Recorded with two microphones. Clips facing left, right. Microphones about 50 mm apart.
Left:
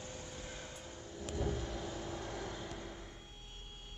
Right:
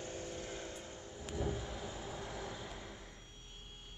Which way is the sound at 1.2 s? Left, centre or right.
Centre.